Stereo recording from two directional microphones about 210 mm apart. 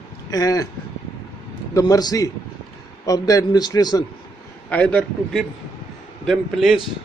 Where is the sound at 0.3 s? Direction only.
15° left (ahead or behind).